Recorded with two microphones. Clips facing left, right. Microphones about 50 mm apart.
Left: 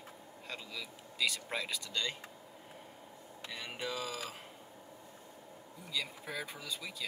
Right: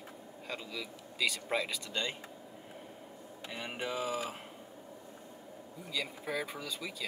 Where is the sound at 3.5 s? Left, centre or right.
Right.